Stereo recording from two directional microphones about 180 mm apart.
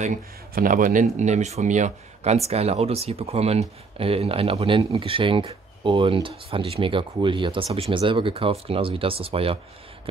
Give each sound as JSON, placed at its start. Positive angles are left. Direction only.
{"t": 0.0, "sound": "speech", "side_deg": -45}